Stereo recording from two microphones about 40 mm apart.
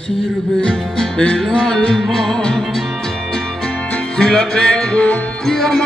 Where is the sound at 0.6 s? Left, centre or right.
Centre.